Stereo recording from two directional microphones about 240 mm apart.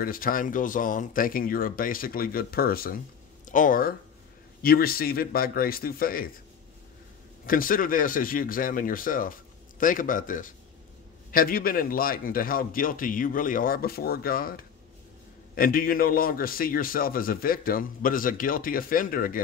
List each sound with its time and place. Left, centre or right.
0.0 s a man's voice: left
7.4 s a man's voice: left